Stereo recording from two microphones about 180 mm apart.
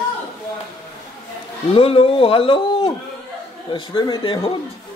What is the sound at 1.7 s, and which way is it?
Speech, 30° left (ahead or behind).